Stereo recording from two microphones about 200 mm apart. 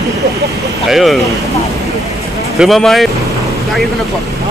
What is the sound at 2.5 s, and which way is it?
Speech, centre (ahead or behind).